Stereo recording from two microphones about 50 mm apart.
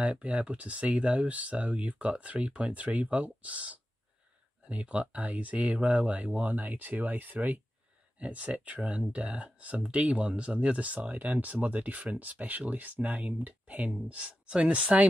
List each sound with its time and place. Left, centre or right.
0.0 s speech: right